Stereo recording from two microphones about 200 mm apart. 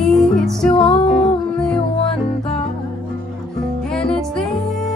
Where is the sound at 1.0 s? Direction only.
25° left (ahead or behind).